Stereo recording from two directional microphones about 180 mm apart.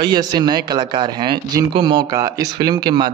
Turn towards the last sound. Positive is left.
turn(degrees=-25)  # may be behind; listen again after turning